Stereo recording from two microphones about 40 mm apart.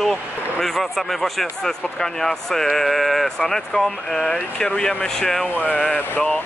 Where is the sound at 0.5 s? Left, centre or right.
Centre.